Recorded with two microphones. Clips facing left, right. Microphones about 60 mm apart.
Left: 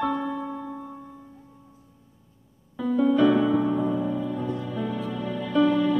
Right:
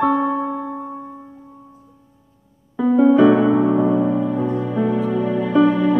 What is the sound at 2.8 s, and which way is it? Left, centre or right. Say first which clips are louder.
Piano: right 8 dB; right.